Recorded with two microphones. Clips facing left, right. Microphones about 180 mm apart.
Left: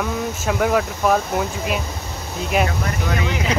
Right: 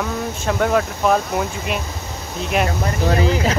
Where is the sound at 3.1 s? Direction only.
35° right (ahead or behind).